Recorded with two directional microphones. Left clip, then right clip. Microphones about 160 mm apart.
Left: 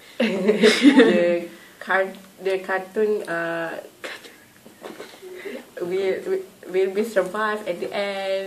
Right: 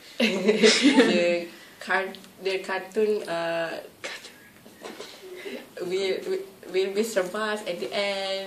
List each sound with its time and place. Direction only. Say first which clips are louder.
0.6 s speech: left 4 dB; 35° left (ahead or behind)
1.1 s speech: left 3 dB; centre (ahead or behind)
5.8 s speech: left 4 dB; centre (ahead or behind)